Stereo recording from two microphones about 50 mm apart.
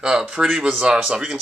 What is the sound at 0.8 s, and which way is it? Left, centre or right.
Speech, centre.